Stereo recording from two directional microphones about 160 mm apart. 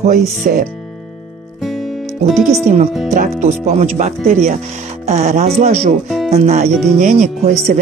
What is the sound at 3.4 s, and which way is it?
Speech, 45° right (ahead or behind).